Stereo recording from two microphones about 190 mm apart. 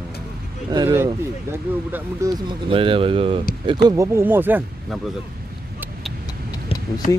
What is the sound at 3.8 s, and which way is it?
Speech, 15° right (ahead or behind).